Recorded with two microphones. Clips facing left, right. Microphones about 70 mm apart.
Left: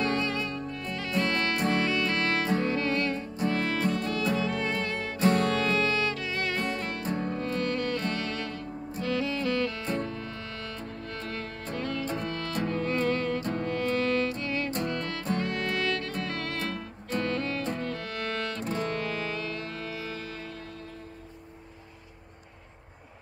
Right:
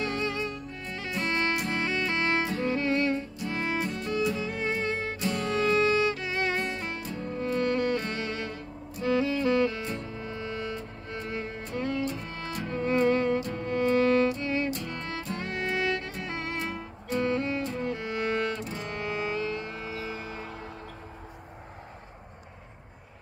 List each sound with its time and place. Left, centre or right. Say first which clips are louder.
0.2 s music: left 1 dB; right
5.2 s music: left 10 dB; left
5.6 s music: right 3 dB; right
7.0 s music: left 4 dB; left
7.3 s music: right 3 dB; right